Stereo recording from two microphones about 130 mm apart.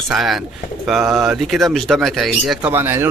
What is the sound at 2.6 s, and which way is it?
Speech, 15° right (ahead or behind).